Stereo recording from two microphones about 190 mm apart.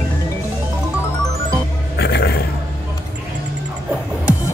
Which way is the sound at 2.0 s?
60° left (ahead or behind).